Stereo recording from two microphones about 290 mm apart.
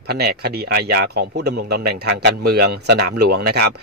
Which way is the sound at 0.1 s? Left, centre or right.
Right.